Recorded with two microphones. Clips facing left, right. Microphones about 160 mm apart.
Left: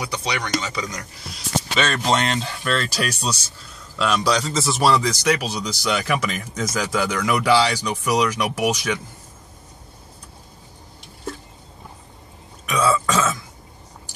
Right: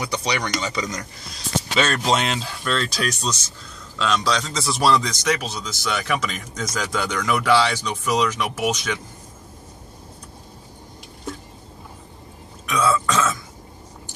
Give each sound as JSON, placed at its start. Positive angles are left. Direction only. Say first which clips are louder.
{"t": 0.0, "sound": "speech", "louder": "right 2 dB", "side_deg": 5}
{"t": 12.6, "sound": "throat clearing", "louder": "left 1 dB", "side_deg": 10}